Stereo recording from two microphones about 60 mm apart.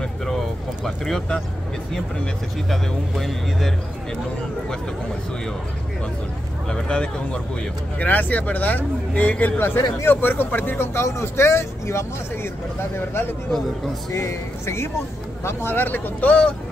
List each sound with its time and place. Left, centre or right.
0.8 s speech: centre
2.7 s speech: centre
6.7 s speech: centre
8.0 s speech: left
9.6 s speech: left
10.8 s speech: left
14.1 s speech: left
15.4 s speech: left